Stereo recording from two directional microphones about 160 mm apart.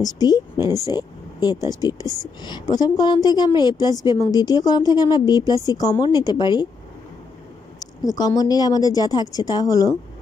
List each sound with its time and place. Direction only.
0.0 s a woman's voice: 25° left (ahead or behind)
0.9 s a sound: 25° left (ahead or behind)
1.7 s a woman's voice: 25° left (ahead or behind)
7.8 s a woman's voice: 25° left (ahead or behind)